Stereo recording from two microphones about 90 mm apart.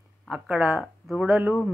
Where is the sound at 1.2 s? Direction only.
20° right (ahead or behind).